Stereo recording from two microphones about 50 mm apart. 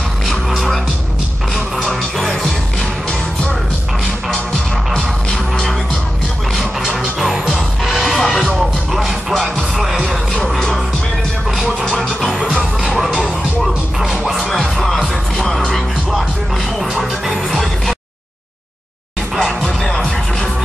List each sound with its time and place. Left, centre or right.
1.9 s music: centre
4.9 s music: centre
6.6 s music: centre
7.0 s music: centre
12.0 s music: centre
15.0 s music: centre
19.3 s music: centre